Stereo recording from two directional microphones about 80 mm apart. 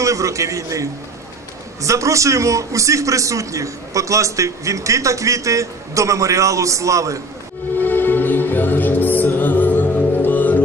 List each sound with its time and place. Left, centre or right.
0.0 s a man's voice: right
7.8 s music: left